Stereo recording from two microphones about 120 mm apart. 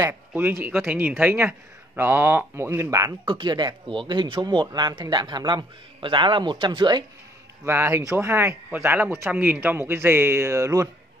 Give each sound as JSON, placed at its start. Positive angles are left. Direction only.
{"t": 0.1, "sound": "speech", "side_deg": -15}
{"t": 3.3, "sound": "speech", "side_deg": -40}
{"t": 7.6, "sound": "speech", "side_deg": -20}